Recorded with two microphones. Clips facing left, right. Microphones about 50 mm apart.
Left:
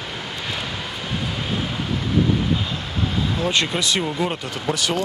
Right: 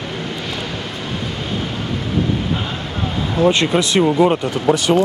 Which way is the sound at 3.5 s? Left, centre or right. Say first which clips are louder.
Right 6 dB; centre.